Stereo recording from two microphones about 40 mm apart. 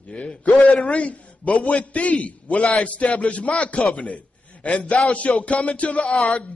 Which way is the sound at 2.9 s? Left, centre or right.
Left.